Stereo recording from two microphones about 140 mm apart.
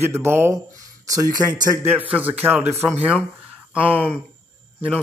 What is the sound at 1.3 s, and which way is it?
Speech, 25° right (ahead or behind).